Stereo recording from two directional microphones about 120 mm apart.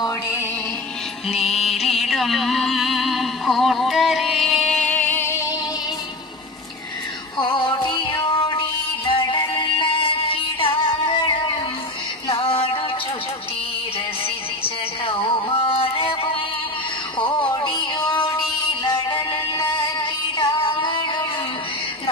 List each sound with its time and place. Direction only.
1.3 s music: centre (ahead or behind); by 5.5 s 20° left (ahead or behind)
7.3 s music: 40° left (ahead or behind)
12.4 s music: 50° left (ahead or behind)
14.6 s music: 50° left (ahead or behind)
17.2 s music: 40° left (ahead or behind)